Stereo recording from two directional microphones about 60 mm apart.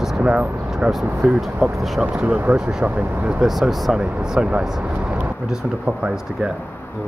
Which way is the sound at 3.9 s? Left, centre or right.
Centre.